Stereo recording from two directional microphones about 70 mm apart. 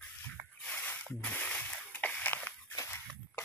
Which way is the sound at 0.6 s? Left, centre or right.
Left.